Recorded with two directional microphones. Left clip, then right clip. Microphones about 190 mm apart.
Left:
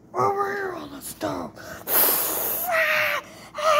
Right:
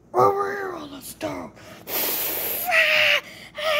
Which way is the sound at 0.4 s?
20° right (ahead or behind).